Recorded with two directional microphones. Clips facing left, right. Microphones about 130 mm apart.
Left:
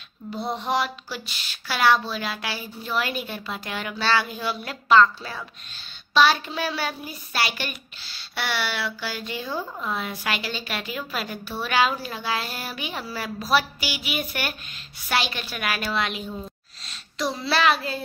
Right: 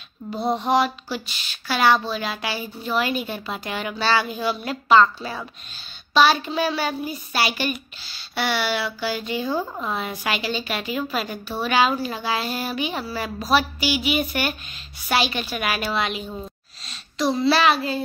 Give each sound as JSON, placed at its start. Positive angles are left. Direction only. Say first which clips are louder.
{"t": 0.7, "sound": "a woman's voice", "louder": "right 4 dB", "side_deg": 0}
{"t": 5.0, "sound": "a woman's voice", "louder": "right 1 dB", "side_deg": -15}
{"t": 9.5, "sound": "a woman's voice", "louder": "right 4 dB", "side_deg": -30}
{"t": 9.8, "sound": "a woman's voice", "louder": "right 2 dB", "side_deg": -5}